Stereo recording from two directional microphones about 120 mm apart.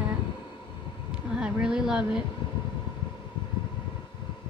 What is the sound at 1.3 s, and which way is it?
Speech, 5° right (ahead or behind).